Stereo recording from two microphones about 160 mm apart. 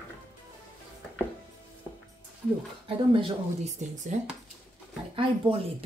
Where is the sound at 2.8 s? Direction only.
35° right (ahead or behind).